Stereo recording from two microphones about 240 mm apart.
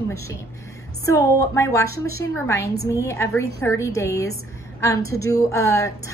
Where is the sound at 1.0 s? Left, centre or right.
Centre.